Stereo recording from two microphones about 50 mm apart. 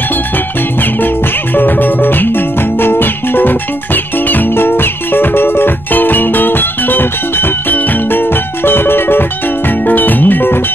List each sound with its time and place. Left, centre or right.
1.0 s music: left